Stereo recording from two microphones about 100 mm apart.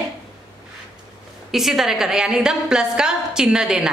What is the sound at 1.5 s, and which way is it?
A woman's voice, centre (ahead or behind).